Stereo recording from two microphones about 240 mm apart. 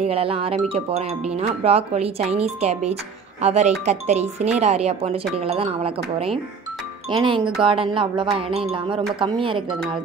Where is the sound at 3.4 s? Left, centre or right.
Right.